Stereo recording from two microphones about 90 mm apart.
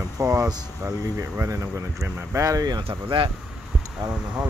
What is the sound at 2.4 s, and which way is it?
Speech, 45° right (ahead or behind).